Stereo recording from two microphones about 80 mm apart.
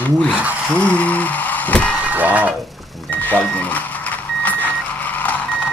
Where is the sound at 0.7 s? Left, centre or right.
Centre.